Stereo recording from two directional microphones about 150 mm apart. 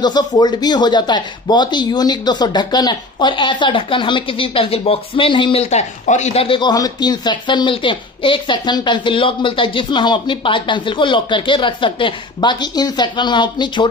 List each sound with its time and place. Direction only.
0.0 s speech: 30° left (ahead or behind)